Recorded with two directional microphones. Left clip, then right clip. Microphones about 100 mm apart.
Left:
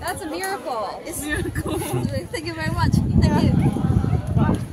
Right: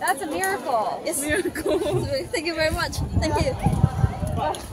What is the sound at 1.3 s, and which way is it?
Speech, 35° left (ahead or behind).